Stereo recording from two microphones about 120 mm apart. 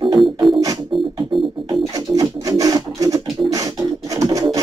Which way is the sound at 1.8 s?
30° right (ahead or behind).